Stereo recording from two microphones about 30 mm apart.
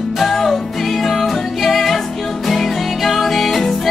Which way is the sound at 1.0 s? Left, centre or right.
Centre.